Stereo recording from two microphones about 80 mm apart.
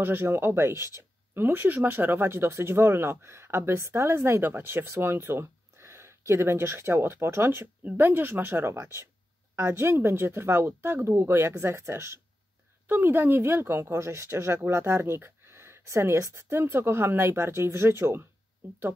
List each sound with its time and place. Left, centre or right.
0.0 s speech: right